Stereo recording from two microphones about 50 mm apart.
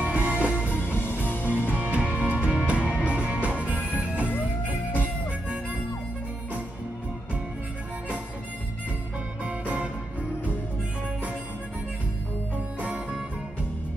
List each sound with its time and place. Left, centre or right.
0.0 s music: right
0.6 s music: left
1.7 s music: right
9.4 s music: right